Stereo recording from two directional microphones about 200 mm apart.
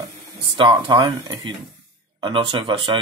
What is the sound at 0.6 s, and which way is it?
Speech, 25° right (ahead or behind).